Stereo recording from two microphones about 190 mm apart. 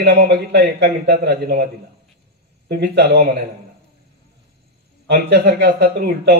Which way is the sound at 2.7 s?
65° right (ahead or behind).